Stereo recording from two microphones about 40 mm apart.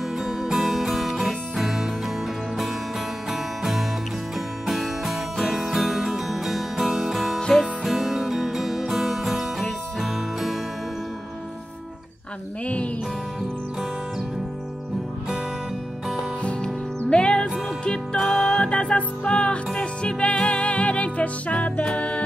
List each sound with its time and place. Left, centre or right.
0.2 s music: centre
3.3 s music: centre
4.8 s music: centre
7.3 s music: centre
7.8 s music: centre
17.1 s music: left
18.1 s music: centre
18.6 s music: left